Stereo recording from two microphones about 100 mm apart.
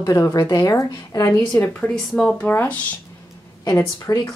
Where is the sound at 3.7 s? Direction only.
40° left (ahead or behind).